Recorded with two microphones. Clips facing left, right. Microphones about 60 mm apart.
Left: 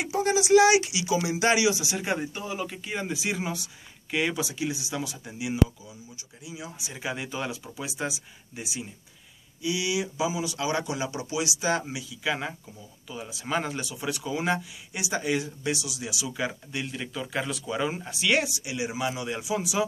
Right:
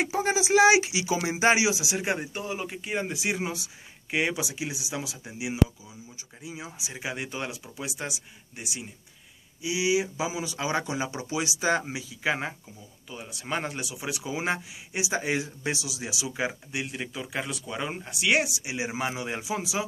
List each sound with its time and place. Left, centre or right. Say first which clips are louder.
0.0 s speech: left 1 dB; right
1.8 s speech: even; centre
6.4 s speech: even; right
6.8 s speech: left 1 dB; centre
9.6 s speech: right 2 dB; centre
13.1 s speech: left 2 dB; centre
18.6 s speech: left 1 dB; right